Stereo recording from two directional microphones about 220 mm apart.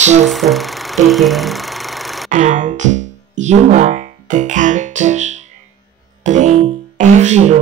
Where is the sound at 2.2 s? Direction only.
35° right (ahead or behind).